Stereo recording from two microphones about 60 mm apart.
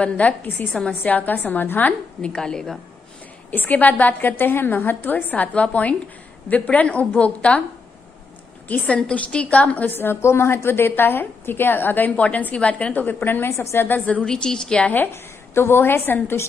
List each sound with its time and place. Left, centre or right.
0.0 s a woman's voice: left
2.2 s a woman's voice: centre
3.5 s a woman's voice: left
8.6 s a woman's voice: left
9.9 s a woman's voice: left
14.2 s a woman's voice: centre
15.5 s a woman's voice: left